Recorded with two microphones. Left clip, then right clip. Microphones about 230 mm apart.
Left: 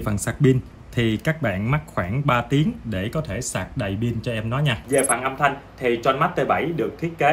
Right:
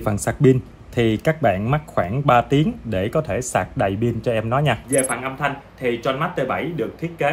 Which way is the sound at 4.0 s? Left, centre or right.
Centre.